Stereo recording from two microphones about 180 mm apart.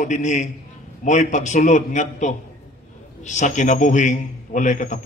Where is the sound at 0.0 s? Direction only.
40° left (ahead or behind).